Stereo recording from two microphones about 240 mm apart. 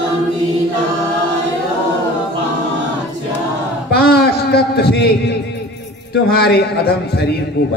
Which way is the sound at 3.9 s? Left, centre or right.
Left.